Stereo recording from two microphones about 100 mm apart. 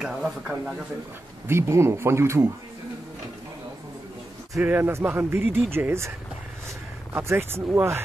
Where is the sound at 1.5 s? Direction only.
25° right (ahead or behind).